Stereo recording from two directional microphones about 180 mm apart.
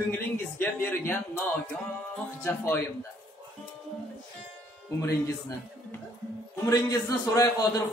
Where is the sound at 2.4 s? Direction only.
15° left (ahead or behind).